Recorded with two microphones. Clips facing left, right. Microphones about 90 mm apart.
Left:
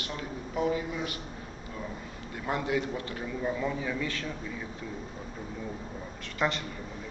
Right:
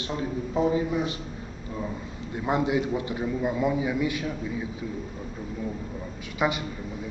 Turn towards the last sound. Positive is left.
turn(degrees=-10)  # may be behind; listen again after turning